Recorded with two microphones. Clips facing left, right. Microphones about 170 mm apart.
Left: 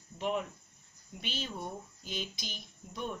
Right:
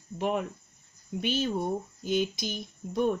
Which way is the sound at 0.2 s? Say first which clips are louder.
Right 5 dB; 50° right (ahead or behind).